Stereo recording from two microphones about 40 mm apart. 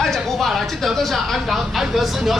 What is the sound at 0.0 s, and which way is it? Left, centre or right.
Speech, centre.